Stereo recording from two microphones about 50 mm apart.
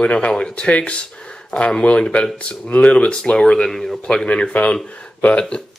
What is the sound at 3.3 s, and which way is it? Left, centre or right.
Speech, centre.